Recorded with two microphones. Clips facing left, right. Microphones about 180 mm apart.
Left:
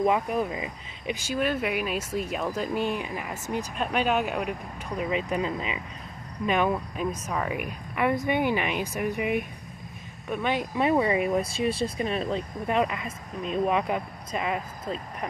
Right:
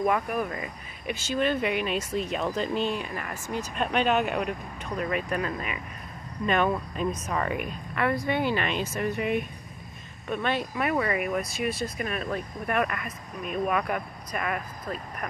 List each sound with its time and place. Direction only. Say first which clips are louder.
0.0 s speech: left 2 dB; 20° left (ahead or behind)
5.1 s speech: left 3 dB; 20° left (ahead or behind)
10.8 s speech: left 6 dB; 25° left (ahead or behind)